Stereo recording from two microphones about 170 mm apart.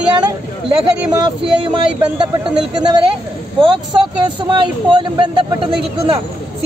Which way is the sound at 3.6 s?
25° right (ahead or behind).